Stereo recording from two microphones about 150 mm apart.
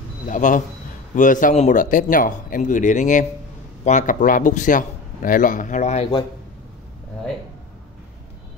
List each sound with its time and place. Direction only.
0.3 s a man's voice: 55° left (ahead or behind)